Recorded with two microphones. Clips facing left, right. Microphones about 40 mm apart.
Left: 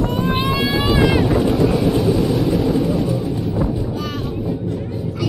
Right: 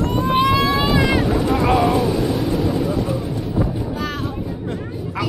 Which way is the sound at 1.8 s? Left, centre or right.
Centre.